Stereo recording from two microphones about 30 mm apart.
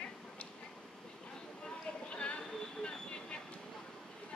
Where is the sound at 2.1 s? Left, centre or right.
Left.